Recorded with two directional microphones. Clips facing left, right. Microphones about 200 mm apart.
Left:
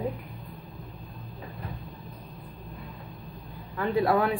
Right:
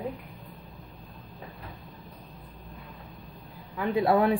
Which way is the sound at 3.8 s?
20° right (ahead or behind).